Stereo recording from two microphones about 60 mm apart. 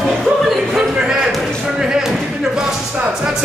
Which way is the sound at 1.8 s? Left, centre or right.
Centre.